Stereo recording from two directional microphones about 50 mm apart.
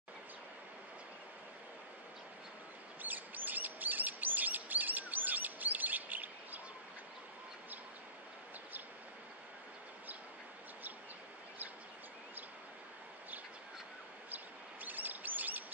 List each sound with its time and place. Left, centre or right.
3.0 s chirp: right
14.3 s chirp: right